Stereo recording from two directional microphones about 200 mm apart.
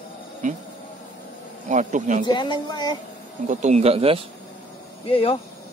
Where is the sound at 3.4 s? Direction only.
35° right (ahead or behind).